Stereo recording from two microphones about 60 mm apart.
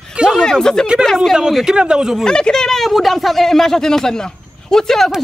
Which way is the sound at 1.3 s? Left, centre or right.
Centre.